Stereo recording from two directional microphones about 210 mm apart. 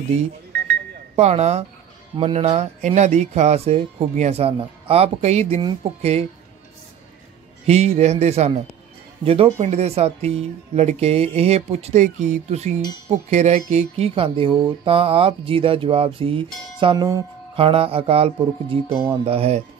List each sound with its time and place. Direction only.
1.1 s speech: 30° right (ahead or behind)
2.1 s mantra: 30° right (ahead or behind)
7.6 s speech: 30° right (ahead or behind)
13.3 s mantra: 30° right (ahead or behind)